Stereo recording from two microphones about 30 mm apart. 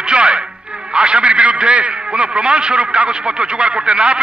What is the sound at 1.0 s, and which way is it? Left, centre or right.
A man's voice, right.